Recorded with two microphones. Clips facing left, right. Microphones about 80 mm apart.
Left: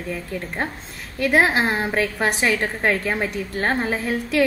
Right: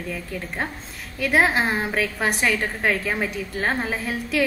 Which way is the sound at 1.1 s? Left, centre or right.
Centre.